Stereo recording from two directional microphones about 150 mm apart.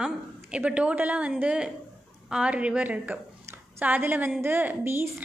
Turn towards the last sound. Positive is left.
turn(degrees=-15)  # may be behind; listen again after turning